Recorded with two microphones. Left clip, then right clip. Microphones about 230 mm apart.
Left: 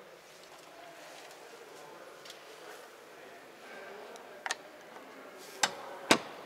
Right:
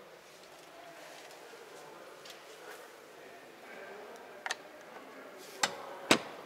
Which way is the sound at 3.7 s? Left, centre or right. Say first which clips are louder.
Left 1 dB; centre.